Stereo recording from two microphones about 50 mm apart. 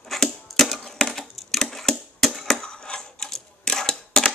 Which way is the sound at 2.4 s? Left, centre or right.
Centre.